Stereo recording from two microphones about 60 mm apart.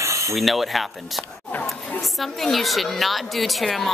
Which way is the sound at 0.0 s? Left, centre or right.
Right.